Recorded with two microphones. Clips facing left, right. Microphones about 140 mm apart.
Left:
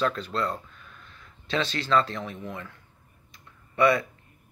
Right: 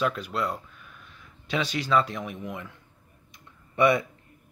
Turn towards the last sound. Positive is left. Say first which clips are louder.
# even
turn(degrees=-20)  # may be behind; listen again after turning